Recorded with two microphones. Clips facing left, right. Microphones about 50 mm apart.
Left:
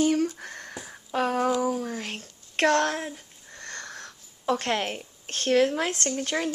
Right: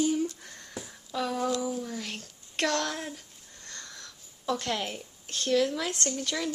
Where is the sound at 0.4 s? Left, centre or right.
Left.